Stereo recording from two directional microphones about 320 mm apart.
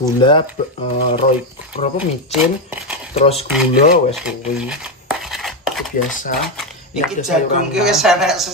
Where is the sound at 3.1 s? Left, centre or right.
Centre.